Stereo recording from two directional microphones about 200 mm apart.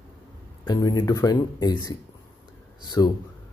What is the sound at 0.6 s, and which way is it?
Speech, 20° left (ahead or behind).